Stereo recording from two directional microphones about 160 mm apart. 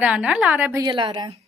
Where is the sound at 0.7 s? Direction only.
25° right (ahead or behind).